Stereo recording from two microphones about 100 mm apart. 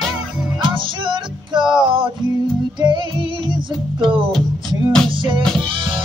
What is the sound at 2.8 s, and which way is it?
Music, 50° right (ahead or behind).